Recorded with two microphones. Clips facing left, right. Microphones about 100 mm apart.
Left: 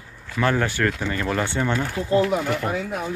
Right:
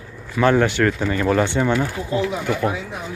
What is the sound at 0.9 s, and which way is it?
Speech, 10° right (ahead or behind).